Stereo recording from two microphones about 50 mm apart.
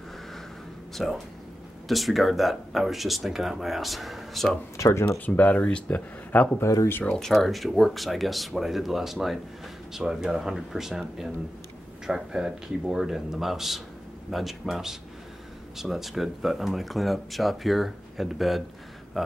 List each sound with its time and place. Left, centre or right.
0.9 s speech: centre
4.8 s speech: left
5.2 s speech: left
6.6 s speech: left
7.2 s speech: centre